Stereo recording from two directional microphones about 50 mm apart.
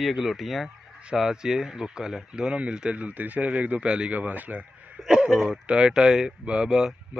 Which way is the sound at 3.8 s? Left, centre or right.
Centre.